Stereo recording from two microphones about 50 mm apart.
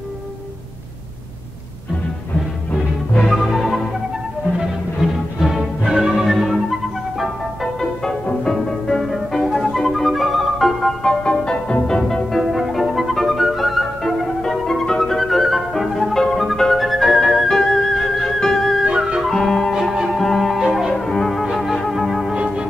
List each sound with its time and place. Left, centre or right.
3.3 s music: centre
5.0 s music: centre
8.5 s music: centre
12.0 s music: centre
18.9 s flute: centre
19.3 s music: centre
20.9 s music: centre
22.3 s music: centre